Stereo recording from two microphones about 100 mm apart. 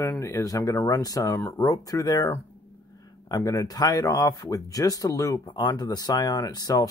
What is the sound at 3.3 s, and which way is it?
Speech, 30° left (ahead or behind).